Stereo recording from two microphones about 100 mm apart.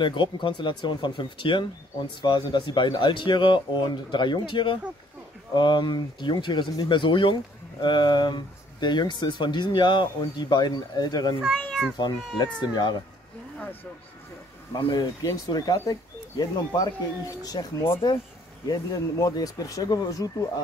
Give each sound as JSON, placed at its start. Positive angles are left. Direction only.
{"t": 0.0, "sound": "speech", "side_deg": 55}
{"t": 11.6, "sound": "a child's voice", "side_deg": 5}
{"t": 12.5, "sound": "speech", "side_deg": 45}
{"t": 14.7, "sound": "speech", "side_deg": 50}
{"t": 15.2, "sound": "speech", "side_deg": 40}